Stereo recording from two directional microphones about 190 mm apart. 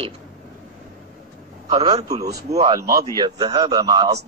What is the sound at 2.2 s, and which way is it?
Speech, 20° right (ahead or behind).